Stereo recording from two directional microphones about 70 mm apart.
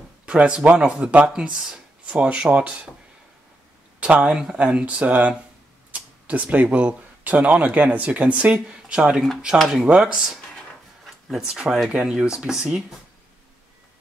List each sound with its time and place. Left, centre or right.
0.3 s speech: centre
4.0 s speech: centre